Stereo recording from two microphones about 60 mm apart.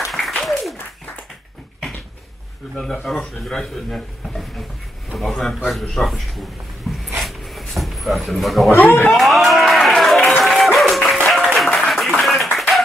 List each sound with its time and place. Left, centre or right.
0.0 s applause: centre
2.8 s a man's voice: centre
7.2 s a sound: centre
8.7 s speech: left
9.1 s a sound: centre
10.4 s music: centre
11.3 s applause: centre
12.5 s clapping: centre